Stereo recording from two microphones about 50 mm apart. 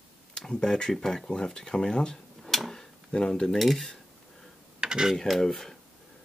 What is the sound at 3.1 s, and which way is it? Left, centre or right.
Speech, centre.